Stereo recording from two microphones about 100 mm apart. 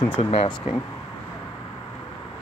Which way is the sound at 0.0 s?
65° left (ahead or behind).